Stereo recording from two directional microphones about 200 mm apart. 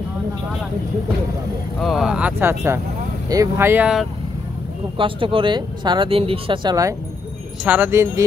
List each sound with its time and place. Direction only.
1.8 s speech: centre (ahead or behind)
4.9 s speech: 25° right (ahead or behind)